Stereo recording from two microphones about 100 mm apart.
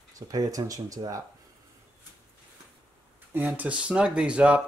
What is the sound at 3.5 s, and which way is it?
Speech, 10° right (ahead or behind).